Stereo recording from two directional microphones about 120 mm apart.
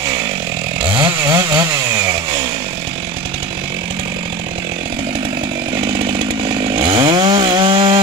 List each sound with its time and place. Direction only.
0.8 s chainsaw: 45° right (ahead or behind)
5.9 s chainsaw: 45° right (ahead or behind)